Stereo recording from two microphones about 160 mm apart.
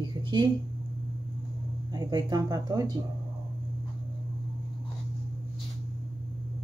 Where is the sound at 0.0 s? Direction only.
30° right (ahead or behind).